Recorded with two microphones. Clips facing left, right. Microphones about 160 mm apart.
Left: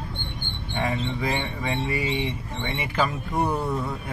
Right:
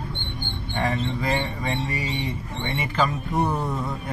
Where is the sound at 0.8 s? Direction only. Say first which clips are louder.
Right 1 dB; centre (ahead or behind).